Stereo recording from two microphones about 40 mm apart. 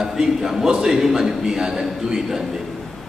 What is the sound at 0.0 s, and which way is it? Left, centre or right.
A man's voice, centre.